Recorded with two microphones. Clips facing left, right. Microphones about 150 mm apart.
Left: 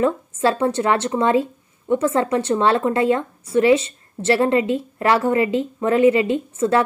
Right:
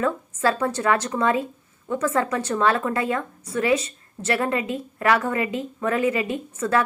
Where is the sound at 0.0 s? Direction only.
25° left (ahead or behind).